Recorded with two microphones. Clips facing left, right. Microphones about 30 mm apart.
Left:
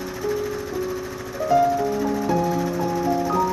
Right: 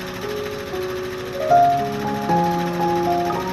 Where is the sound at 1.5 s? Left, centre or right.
Right.